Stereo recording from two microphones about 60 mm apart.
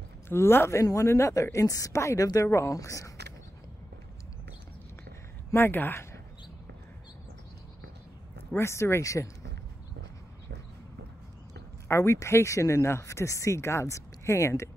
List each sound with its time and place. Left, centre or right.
0.3 s speech: left
0.7 s a woman's voice: left
2.7 s a woman's voice: left
5.5 s speech: left
8.5 s speech: left
11.9 s speech: left